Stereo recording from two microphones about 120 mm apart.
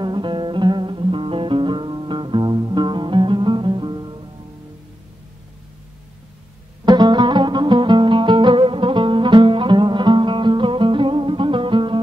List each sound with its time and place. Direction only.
0.0 s music: 40° right (ahead or behind)
6.8 s music: 35° right (ahead or behind)